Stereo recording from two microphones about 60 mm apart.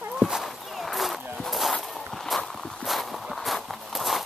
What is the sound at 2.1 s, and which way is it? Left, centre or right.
Walk, centre.